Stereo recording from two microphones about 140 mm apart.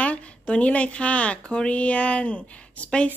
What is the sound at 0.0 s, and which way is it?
Speech, 10° left (ahead or behind).